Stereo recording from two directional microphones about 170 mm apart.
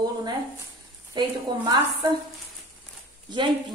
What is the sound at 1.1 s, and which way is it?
Speech, 25° right (ahead or behind).